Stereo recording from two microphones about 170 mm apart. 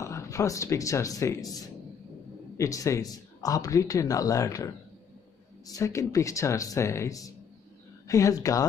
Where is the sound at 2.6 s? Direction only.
20° left (ahead or behind).